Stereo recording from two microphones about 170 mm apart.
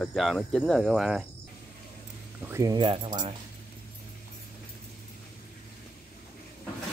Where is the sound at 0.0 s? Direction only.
Centre (ahead or behind).